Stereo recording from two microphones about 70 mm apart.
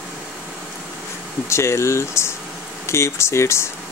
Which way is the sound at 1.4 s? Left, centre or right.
Left.